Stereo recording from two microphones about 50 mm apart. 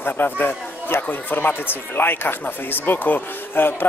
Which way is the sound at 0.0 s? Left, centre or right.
Left.